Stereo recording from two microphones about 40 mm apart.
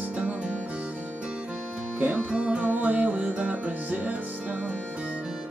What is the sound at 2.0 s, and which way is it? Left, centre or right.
Music, right.